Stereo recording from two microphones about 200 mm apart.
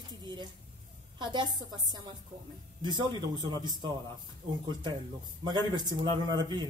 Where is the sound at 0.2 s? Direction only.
20° right (ahead or behind).